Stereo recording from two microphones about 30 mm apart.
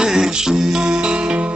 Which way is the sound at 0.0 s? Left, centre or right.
Centre.